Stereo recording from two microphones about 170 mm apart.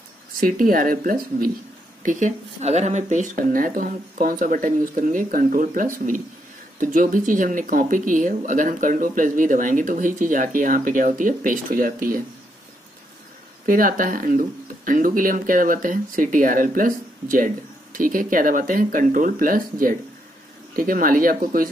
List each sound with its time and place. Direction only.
0.4 s speech: 55° right (ahead or behind)
2.0 s speech: 45° right (ahead or behind)
13.7 s speech: 55° right (ahead or behind)